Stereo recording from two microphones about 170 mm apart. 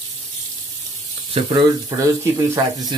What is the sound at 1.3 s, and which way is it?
Speech, 30° right (ahead or behind).